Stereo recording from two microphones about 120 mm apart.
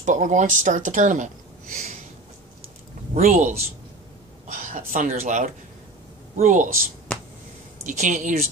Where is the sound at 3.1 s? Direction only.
80° right.